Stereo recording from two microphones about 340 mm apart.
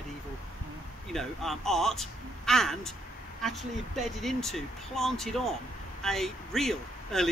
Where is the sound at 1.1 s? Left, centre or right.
Centre.